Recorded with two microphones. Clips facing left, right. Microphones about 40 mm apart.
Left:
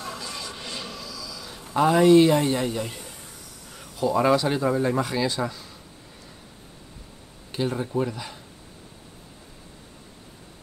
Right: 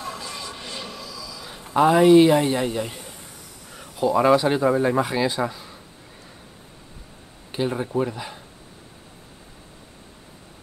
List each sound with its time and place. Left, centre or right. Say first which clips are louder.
0.0 s a sound: right 2 dB; right
1.8 s a man's voice: right 2 dB; centre
7.5 s a man's voice: right 2 dB; centre